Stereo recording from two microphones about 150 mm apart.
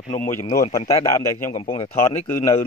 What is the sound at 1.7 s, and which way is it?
Speech, 45° left (ahead or behind).